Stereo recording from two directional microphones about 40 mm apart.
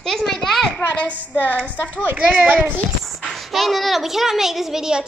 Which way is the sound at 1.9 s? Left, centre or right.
Right.